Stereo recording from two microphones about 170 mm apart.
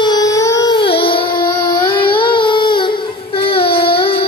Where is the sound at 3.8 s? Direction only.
30° left (ahead or behind).